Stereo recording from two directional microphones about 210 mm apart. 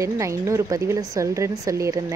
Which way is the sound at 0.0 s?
15° right (ahead or behind).